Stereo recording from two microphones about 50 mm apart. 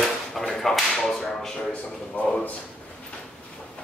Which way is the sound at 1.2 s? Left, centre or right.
Centre.